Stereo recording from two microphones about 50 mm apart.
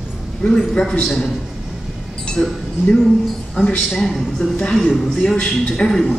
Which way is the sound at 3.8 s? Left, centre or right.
Centre.